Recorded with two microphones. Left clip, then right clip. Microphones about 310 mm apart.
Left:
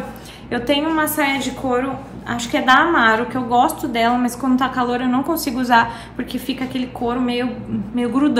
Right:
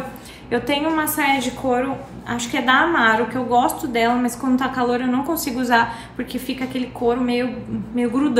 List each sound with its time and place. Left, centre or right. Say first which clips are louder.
0.5 s a woman's voice: left 1 dB; centre